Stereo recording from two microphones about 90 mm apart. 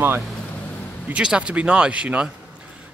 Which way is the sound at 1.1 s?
10° right (ahead or behind).